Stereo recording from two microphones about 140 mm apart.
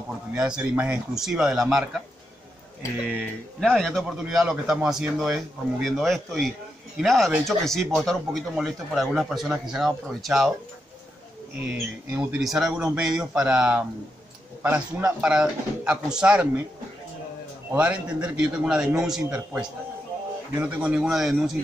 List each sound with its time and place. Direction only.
0.4 s speech: 10° right (ahead or behind)
3.6 s speech: centre (ahead or behind)
11.7 s a man's voice: 10° right (ahead or behind)
17.7 s a man's voice: 10° right (ahead or behind)